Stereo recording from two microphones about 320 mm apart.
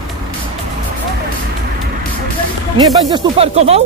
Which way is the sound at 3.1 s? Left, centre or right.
Centre.